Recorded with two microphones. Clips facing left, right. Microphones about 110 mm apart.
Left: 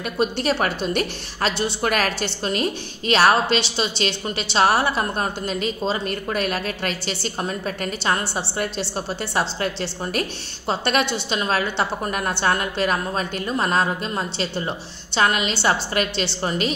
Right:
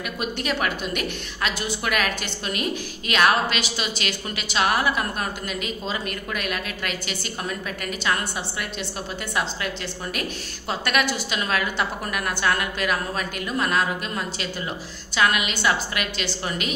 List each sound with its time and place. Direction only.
0.2 s a woman's voice: 35° left (ahead or behind)
10.7 s a woman's voice: 30° left (ahead or behind)